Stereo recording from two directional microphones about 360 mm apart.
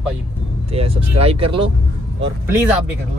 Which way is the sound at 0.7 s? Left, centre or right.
Centre.